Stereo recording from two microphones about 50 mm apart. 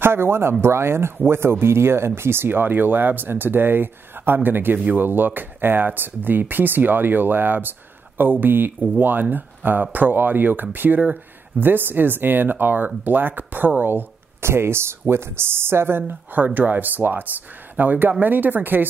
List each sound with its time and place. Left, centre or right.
0.0 s speech: right
14.4 s speech: right
16.5 s speech: right